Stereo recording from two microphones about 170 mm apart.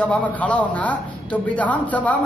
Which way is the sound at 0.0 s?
10° left (ahead or behind).